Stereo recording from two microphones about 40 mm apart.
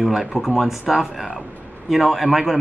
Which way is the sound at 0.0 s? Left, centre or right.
Centre.